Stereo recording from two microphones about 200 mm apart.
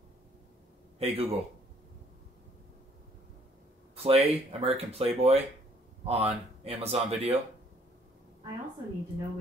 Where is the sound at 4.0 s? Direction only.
30° right (ahead or behind).